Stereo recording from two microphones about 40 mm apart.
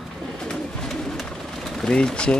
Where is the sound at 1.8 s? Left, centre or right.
Centre.